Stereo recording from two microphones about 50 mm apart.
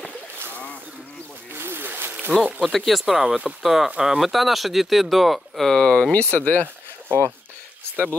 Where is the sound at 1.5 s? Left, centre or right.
Right.